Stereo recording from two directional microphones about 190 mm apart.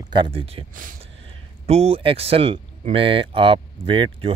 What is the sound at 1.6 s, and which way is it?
Speech, 30° right (ahead or behind).